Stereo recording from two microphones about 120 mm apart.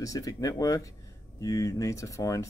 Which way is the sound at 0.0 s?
30° left (ahead or behind).